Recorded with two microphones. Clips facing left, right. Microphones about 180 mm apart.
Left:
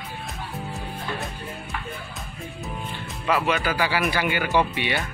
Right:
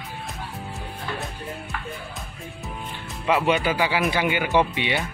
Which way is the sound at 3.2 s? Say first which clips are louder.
Right 2 dB; 20° right (ahead or behind).